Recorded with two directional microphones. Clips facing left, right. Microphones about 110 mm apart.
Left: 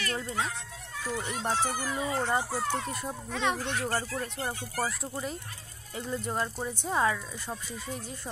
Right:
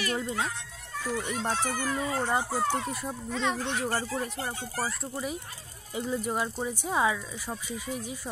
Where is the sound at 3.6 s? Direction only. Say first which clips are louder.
Right 1 dB; 10° right (ahead or behind).